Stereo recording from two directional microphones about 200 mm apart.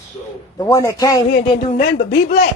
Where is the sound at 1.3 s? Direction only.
45° left (ahead or behind).